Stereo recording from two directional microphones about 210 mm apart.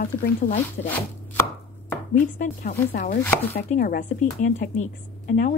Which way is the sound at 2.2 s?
35° left (ahead or behind).